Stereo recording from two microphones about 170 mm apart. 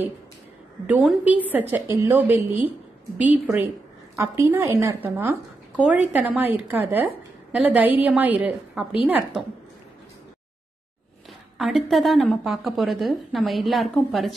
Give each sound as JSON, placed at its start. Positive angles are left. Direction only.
{"t": 0.8, "sound": "a woman's voice", "side_deg": -10}
{"t": 11.5, "sound": "a woman's voice", "side_deg": 0}